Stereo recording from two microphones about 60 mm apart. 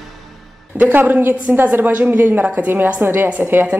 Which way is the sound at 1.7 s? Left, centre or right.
Right.